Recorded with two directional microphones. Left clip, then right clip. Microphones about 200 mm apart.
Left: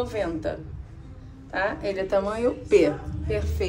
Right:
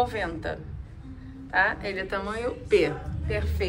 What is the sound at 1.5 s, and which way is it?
A woman's voice, 25° left (ahead or behind).